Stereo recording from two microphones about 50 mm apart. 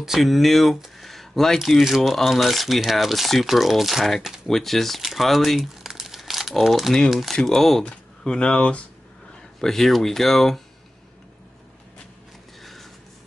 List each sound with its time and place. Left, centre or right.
0.0 s speech: centre
0.9 s a sound: centre
2.0 s speech: centre
5.0 s crumpling: centre
6.7 s speech: centre; by 8.8 s left
9.6 s speech: centre